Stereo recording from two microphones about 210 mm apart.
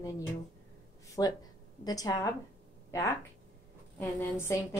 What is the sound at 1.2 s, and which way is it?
A woman's voice, 15° left (ahead or behind).